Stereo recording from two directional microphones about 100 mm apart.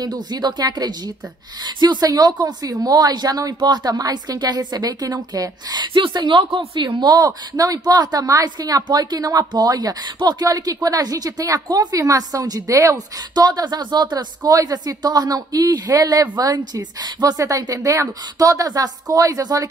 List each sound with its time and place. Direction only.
0.0 s a woman's voice: 45° right (ahead or behind)